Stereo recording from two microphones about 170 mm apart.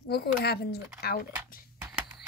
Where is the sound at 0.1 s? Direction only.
70° left (ahead or behind).